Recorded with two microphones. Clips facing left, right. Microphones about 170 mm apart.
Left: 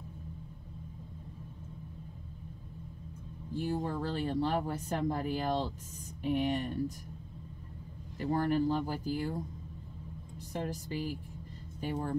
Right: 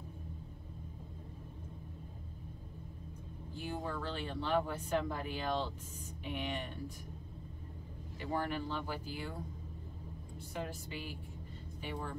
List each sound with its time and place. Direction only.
3.5 s speech: 40° left (ahead or behind)
8.2 s speech: 45° left (ahead or behind)
10.5 s speech: 40° left (ahead or behind)